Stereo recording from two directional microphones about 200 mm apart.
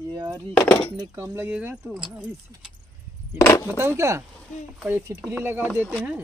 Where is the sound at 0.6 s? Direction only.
10° left (ahead or behind).